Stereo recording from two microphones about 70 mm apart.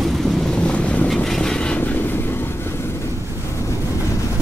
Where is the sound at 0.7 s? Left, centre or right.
Centre.